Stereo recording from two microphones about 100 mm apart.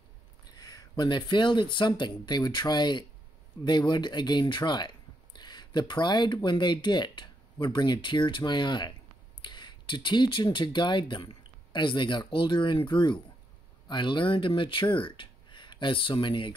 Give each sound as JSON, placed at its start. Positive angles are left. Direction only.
{"t": 0.5, "sound": "speech", "side_deg": 40}